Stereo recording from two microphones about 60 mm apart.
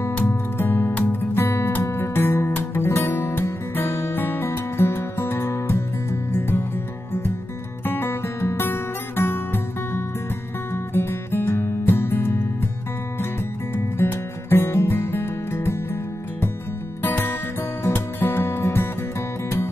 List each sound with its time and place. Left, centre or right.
0.3 s music: left
7.8 s music: left
13.9 s music: left
17.0 s music: left